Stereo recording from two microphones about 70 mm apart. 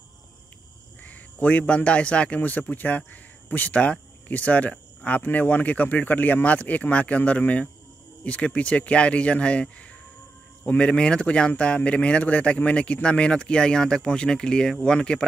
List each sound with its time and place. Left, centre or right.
1.0 s a man's voice: left